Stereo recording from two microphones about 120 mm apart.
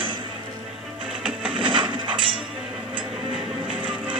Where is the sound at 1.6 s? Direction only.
45° right (ahead or behind).